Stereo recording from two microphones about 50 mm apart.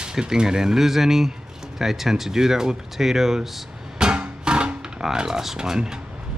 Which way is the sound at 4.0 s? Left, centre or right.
Centre.